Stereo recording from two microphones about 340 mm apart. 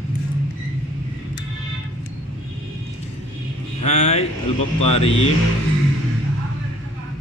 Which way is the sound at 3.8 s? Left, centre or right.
Centre.